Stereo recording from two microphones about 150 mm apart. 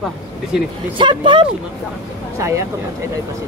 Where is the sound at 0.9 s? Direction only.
35° right (ahead or behind).